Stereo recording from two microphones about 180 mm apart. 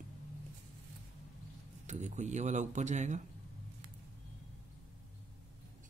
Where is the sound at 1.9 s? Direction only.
40° right (ahead or behind).